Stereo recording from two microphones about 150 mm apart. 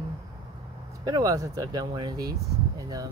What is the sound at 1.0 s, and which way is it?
Speech, 25° right (ahead or behind).